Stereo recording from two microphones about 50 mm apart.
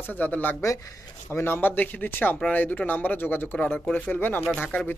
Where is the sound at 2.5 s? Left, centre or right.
Left.